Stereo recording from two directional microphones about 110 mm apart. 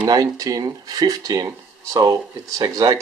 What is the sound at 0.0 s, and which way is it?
Speech, 35° right (ahead or behind).